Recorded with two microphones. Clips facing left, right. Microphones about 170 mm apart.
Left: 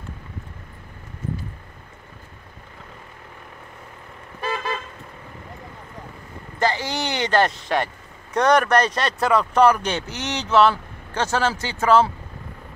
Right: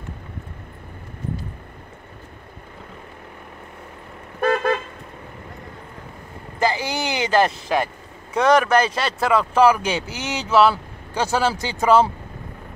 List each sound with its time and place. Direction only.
4.4 s toot: 60° right (ahead or behind)
6.6 s speech: 10° right (ahead or behind)